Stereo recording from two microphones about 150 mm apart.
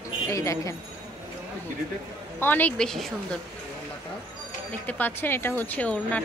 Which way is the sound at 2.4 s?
10° left (ahead or behind).